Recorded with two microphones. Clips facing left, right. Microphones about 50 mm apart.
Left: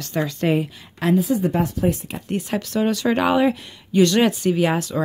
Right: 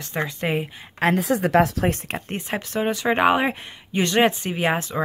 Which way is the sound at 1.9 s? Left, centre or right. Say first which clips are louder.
Left 1 dB; right.